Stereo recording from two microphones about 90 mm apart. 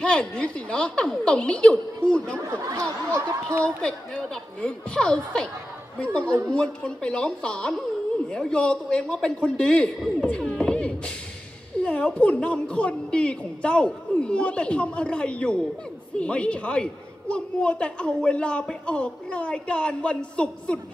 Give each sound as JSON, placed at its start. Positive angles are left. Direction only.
{"t": 0.0, "sound": "a woman's voice", "side_deg": 10}
{"t": 2.4, "sound": "a sound", "side_deg": -40}
{"t": 3.6, "sound": "a woman's voice", "side_deg": 10}